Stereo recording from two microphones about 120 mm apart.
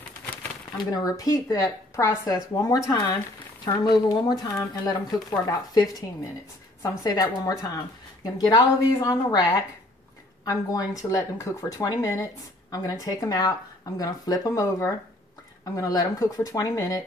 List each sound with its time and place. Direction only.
0.9 s speech: 30° left (ahead or behind)